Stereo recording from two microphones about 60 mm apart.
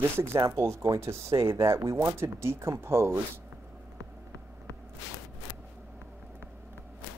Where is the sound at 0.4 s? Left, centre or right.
Right.